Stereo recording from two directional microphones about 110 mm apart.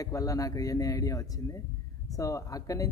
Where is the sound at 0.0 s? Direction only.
30° left (ahead or behind).